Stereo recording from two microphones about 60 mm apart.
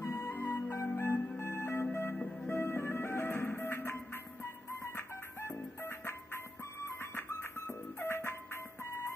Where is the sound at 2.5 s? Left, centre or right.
Left.